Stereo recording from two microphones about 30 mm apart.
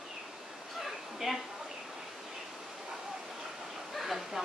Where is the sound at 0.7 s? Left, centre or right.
Centre.